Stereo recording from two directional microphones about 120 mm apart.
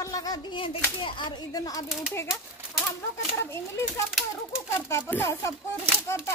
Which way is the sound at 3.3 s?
20° left (ahead or behind).